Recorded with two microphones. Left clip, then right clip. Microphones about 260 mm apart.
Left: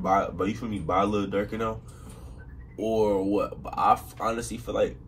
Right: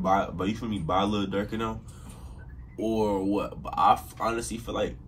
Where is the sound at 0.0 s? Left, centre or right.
Centre.